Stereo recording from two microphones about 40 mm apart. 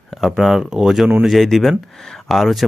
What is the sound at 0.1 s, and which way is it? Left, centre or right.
Speech, centre.